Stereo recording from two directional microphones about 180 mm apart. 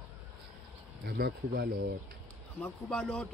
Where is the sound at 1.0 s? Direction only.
60° right (ahead or behind).